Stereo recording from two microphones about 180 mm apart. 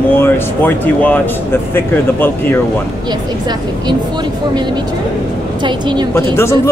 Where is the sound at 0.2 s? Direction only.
10° left (ahead or behind).